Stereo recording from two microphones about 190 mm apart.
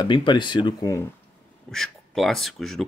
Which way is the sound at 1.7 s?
Centre (ahead or behind).